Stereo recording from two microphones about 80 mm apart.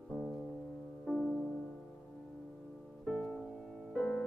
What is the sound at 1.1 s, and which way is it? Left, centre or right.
Music, centre.